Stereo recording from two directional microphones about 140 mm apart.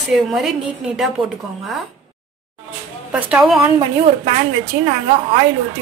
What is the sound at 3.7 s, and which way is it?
Speech, 40° right (ahead or behind).